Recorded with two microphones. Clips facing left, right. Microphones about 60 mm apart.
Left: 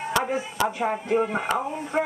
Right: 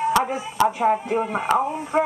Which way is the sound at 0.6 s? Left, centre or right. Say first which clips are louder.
Right 8 dB; right.